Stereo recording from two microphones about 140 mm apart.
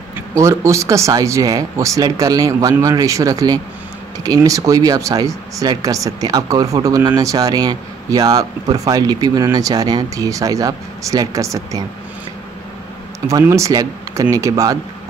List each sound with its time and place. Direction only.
0.3 s speech: 20° right (ahead or behind)
13.3 s speech: 20° right (ahead or behind)